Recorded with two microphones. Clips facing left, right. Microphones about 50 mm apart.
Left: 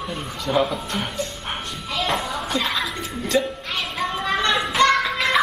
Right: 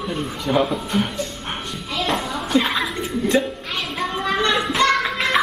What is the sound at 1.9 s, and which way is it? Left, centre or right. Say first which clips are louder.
Music: right 1 dB; centre.